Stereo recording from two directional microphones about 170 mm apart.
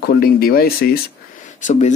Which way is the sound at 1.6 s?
45° left (ahead or behind).